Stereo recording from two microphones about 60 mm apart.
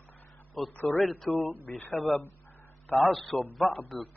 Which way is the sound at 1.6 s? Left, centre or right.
Left.